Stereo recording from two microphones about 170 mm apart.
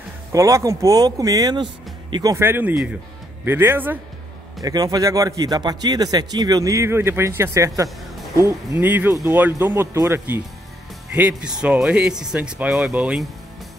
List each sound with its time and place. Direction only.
0.3 s a man's voice: 20° right (ahead or behind)
2.3 s speech: 15° right (ahead or behind)
4.6 s a man's voice: 20° right (ahead or behind); by 13.3 s 5° right (ahead or behind)